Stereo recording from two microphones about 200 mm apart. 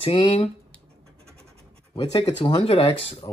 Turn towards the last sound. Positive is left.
turn(degrees=30)  # may be behind; listen again after turning